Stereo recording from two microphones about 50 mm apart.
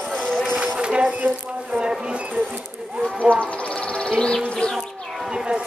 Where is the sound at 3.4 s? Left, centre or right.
Left.